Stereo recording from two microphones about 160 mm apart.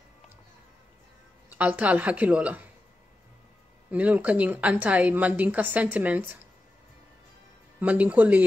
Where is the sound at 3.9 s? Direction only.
10° right (ahead or behind).